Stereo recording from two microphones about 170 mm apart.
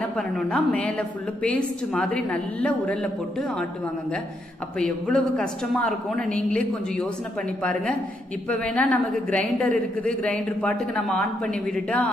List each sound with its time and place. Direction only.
0.1 s a woman's voice: centre (ahead or behind)
4.7 s a woman's voice: 5° left (ahead or behind)
8.5 s speech: 5° left (ahead or behind)